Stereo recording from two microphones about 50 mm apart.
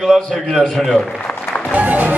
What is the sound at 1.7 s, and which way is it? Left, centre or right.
Speech, right.